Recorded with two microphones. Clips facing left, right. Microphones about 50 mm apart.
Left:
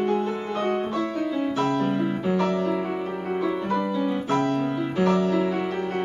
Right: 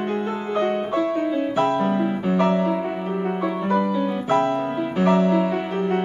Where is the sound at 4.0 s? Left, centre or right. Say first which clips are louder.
Right 3 dB; right.